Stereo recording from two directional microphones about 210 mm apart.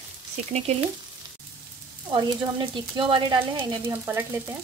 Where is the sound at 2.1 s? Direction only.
25° right (ahead or behind).